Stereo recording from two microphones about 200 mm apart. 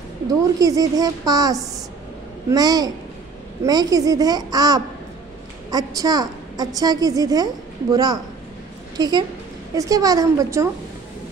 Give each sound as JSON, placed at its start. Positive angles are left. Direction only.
{"t": 0.3, "sound": "a child's voice", "side_deg": -15}